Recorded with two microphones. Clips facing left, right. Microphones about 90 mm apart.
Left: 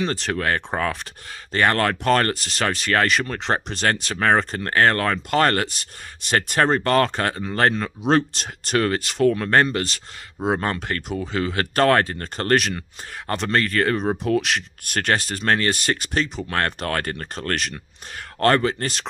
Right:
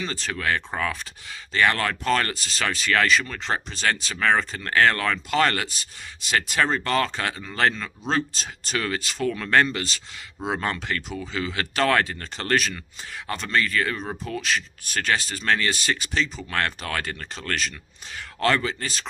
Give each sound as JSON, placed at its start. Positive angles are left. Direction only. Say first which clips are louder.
{"t": 0.0, "sound": "speech", "louder": "left 6 dB", "side_deg": 65}
{"t": 0.7, "sound": "speech", "louder": "left 3 dB", "side_deg": 50}
{"t": 8.1, "sound": "speech", "louder": "left 6 dB", "side_deg": 60}
{"t": 14.2, "sound": "speech", "louder": "left 6 dB", "side_deg": 70}